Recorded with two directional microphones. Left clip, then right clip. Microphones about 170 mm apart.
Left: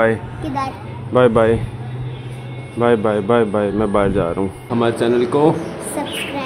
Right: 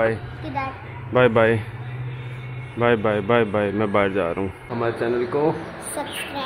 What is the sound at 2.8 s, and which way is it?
A child's voice, 5° right (ahead or behind).